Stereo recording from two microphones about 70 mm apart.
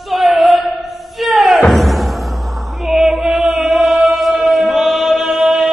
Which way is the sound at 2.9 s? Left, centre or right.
Centre.